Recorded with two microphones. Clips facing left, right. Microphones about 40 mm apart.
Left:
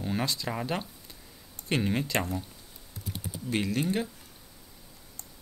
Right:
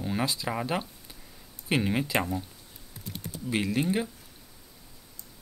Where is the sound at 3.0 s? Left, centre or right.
Centre.